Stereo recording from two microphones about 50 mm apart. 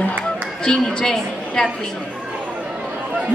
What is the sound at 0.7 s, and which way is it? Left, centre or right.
A man's voice, centre.